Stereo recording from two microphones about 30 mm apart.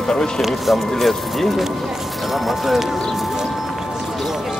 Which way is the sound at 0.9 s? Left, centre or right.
Centre.